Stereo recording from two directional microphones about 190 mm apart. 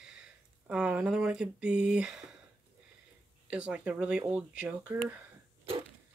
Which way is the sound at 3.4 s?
5° right (ahead or behind).